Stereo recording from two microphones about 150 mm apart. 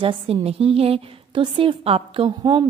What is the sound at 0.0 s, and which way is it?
A woman's voice, 40° right (ahead or behind).